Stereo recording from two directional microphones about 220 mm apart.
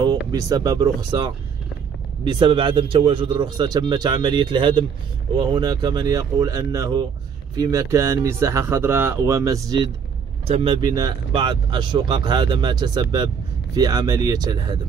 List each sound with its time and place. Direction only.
0.0 s speech: 15° right (ahead or behind)
10.4 s speech: 25° right (ahead or behind)